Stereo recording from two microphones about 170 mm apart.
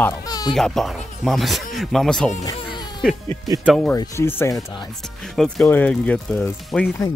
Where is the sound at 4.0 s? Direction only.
15° left (ahead or behind).